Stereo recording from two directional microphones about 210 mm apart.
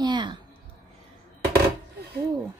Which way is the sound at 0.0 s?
20° right (ahead or behind).